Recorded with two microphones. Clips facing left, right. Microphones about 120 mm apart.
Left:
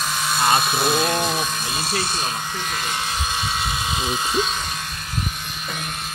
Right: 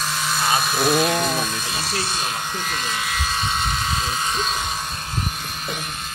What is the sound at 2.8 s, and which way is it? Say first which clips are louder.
Electric shaver: even; 25° left (ahead or behind).